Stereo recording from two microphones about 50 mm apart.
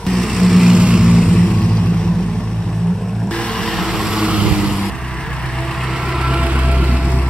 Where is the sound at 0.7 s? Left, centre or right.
Centre.